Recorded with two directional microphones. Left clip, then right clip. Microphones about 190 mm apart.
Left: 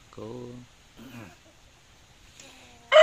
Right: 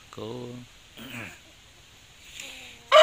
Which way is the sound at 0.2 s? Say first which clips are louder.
Right 3 dB; 10° right (ahead or behind).